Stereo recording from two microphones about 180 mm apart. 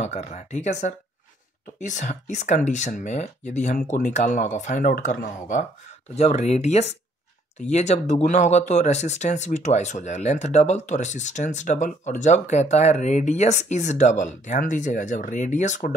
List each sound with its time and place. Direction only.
0.0 s speech: 40° left (ahead or behind)